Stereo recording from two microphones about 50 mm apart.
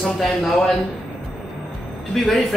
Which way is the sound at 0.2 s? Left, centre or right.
Centre.